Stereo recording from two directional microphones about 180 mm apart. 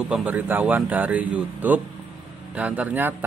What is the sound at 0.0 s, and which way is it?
Speech, 5° right (ahead or behind).